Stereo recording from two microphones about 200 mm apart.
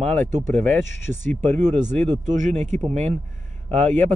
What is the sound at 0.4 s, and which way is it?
Speech, centre (ahead or behind).